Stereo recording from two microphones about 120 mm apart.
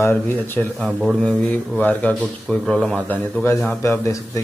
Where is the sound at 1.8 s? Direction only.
10° left (ahead or behind).